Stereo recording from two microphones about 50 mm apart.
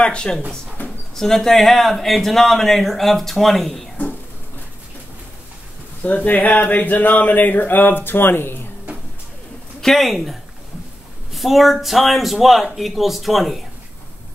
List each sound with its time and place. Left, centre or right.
0.0 s speech: centre
0.8 s speech: centre
6.0 s speech: left
9.8 s speech: centre
11.3 s speech: centre